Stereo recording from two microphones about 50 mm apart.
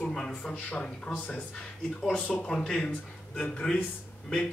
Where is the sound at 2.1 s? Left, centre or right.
Left.